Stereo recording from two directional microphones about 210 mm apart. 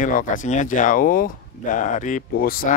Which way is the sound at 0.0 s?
40° left (ahead or behind).